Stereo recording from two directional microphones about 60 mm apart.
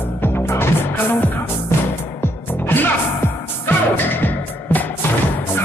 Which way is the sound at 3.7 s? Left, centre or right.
Left.